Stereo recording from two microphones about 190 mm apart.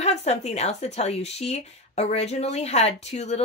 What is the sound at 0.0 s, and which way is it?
Speech, 35° left (ahead or behind).